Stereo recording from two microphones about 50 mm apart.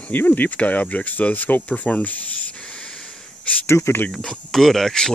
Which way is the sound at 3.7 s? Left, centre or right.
Left.